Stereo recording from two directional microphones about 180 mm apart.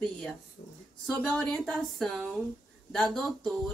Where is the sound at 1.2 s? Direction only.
5° left (ahead or behind).